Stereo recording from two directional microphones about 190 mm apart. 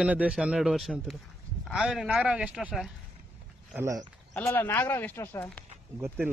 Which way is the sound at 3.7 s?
15° right (ahead or behind).